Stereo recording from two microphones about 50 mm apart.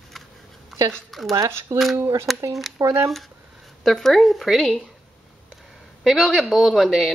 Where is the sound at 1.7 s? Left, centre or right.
Right.